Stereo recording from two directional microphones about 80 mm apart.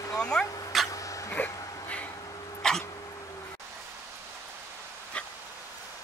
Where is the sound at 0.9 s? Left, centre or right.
Left.